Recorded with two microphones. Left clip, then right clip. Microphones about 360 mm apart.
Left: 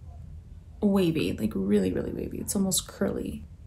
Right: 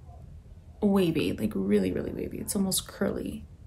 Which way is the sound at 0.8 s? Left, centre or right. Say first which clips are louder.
Even; centre.